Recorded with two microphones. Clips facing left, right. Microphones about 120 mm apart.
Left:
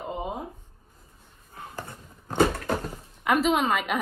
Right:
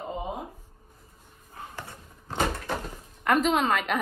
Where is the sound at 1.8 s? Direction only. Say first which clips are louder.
Left 3 dB; 45° left (ahead or behind).